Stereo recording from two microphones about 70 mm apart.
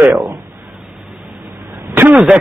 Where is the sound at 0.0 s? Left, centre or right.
Centre.